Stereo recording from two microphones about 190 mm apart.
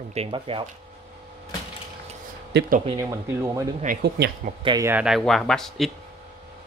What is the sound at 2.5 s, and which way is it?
Speech, 65° right (ahead or behind).